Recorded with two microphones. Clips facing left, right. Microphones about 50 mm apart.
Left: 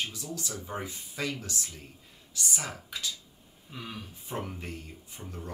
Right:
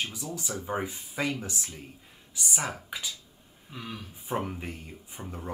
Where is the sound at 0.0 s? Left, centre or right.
Centre.